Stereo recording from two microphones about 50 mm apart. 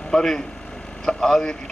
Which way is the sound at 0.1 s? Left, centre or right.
Centre.